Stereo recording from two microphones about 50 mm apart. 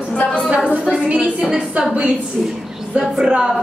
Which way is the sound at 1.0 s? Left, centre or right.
Right.